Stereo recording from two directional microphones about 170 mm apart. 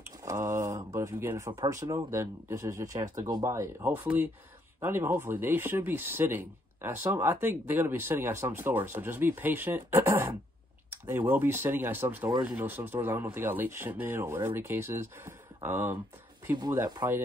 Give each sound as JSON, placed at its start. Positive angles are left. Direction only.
{"t": 0.0, "sound": "speech", "side_deg": -15}
{"t": 16.5, "sound": "speech", "side_deg": -25}